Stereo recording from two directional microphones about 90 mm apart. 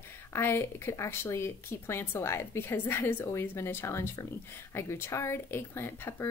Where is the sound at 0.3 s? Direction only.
25° left (ahead or behind).